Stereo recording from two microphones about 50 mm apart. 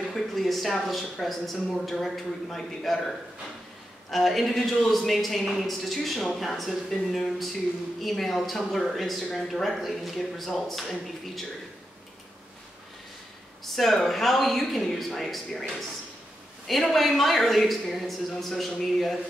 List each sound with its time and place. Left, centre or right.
0.1 s speech: centre
13.7 s speech: centre